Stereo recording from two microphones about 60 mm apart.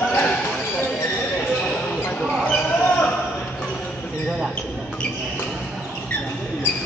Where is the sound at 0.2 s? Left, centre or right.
Centre.